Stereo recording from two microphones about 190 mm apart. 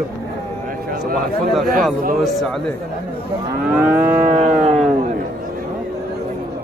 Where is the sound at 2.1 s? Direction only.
Centre (ahead or behind).